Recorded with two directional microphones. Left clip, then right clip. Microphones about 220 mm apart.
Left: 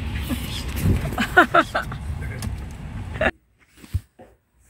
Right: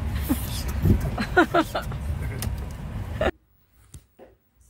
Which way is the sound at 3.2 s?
10° right (ahead or behind).